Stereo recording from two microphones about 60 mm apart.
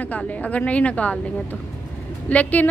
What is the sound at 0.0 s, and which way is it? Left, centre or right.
A woman's voice, left.